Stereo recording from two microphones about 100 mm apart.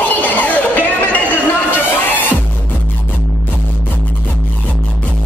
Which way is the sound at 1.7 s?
20° left (ahead or behind).